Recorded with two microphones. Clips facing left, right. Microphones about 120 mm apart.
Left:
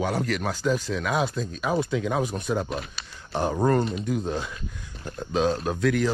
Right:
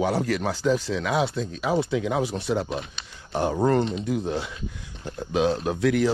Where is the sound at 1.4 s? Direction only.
90° right.